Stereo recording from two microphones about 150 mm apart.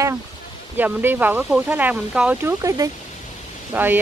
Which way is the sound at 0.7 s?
10° right (ahead or behind).